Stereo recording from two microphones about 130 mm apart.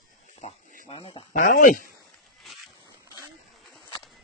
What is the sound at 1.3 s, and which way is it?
Speech, 90° left.